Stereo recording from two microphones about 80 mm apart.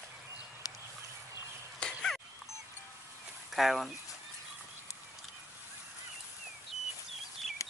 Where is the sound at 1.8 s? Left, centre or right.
Centre.